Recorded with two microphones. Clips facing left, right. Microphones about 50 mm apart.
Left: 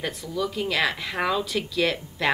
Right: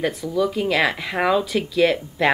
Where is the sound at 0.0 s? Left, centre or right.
Centre.